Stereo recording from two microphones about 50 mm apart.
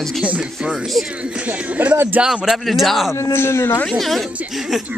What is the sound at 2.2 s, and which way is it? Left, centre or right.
Speech, centre.